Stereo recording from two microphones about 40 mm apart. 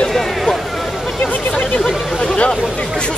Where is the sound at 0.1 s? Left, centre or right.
Centre.